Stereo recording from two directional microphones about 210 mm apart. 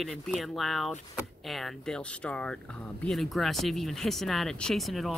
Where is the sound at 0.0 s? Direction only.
Centre (ahead or behind).